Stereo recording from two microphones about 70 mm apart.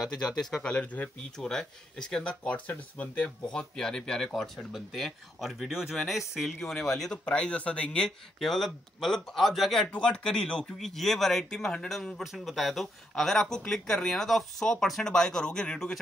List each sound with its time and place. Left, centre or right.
0.0 s speech: centre
1.3 s speech: centre
6.6 s speech: centre
8.4 s speech: centre
9.8 s speech: centre
10.8 s speech: centre